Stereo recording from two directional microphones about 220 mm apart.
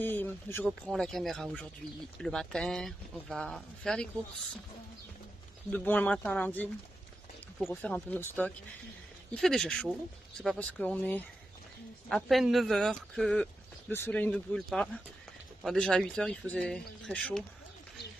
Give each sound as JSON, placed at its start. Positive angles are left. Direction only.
{"t": 0.0, "sound": "speech", "side_deg": 10}
{"t": 5.7, "sound": "speech", "side_deg": 10}